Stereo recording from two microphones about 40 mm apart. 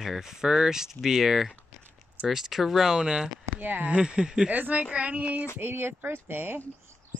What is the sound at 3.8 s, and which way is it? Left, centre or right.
Speech, right.